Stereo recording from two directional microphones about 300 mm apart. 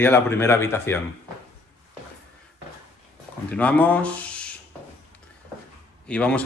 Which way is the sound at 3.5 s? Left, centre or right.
Centre.